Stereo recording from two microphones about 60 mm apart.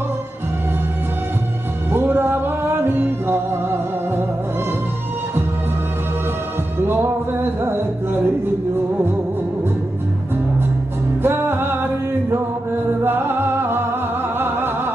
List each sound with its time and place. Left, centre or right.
1.9 s music: right
6.8 s music: right
11.2 s music: right